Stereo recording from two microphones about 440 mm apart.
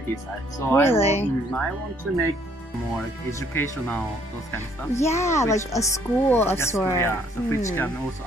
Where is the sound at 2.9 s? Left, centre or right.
Centre.